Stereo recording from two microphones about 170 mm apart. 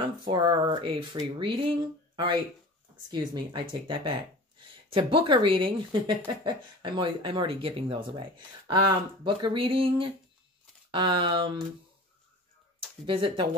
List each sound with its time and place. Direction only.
0.3 s speech: 25° right (ahead or behind)
13.0 s speech: 30° right (ahead or behind)